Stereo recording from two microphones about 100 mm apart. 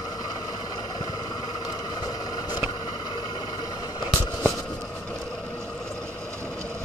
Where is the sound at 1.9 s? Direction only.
40° left (ahead or behind).